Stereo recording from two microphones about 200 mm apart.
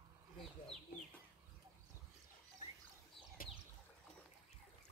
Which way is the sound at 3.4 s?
45° left (ahead or behind).